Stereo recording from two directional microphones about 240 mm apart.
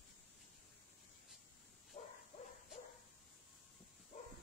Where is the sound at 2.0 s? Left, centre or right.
Left.